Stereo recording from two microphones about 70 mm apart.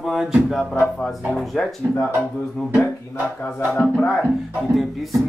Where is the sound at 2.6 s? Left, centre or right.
Centre.